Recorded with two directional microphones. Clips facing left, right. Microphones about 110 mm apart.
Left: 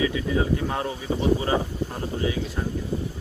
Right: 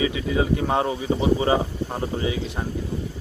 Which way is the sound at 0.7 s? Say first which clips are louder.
Right 5 dB; 25° right (ahead or behind).